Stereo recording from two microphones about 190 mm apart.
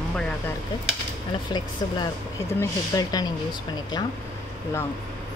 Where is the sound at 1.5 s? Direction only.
20° left (ahead or behind).